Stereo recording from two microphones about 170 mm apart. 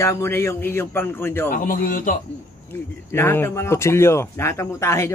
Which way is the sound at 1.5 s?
55° left (ahead or behind).